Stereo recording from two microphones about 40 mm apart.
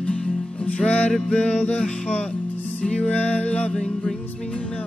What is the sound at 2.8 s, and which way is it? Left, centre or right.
Music, left.